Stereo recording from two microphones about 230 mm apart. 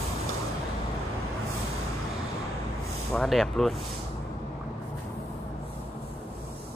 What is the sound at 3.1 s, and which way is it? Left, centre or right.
Speech, centre.